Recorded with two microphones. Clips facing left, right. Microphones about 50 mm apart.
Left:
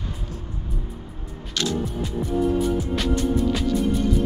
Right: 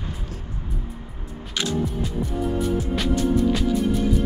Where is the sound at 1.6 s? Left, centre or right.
Centre.